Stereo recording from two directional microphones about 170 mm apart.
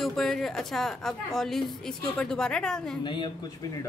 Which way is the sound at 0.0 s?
Centre (ahead or behind).